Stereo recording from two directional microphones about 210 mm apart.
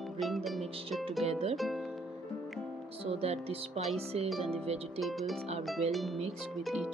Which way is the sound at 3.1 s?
30° right (ahead or behind).